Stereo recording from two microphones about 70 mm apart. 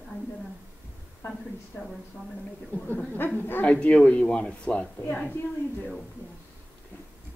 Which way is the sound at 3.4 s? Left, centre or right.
Left.